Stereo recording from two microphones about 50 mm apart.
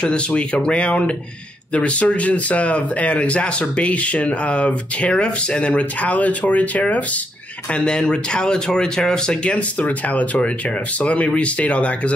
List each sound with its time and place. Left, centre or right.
0.0 s speech: left
7.7 s speech: centre